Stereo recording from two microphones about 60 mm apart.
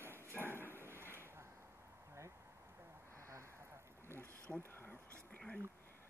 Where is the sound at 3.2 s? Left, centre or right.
Right.